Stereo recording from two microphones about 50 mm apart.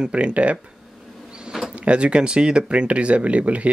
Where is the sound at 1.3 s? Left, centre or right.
Centre.